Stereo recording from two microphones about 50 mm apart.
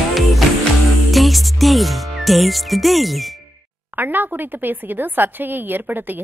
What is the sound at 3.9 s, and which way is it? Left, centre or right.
Speech, right.